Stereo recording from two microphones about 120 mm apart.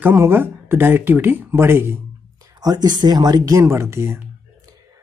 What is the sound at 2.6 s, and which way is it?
Speech, 35° right (ahead or behind).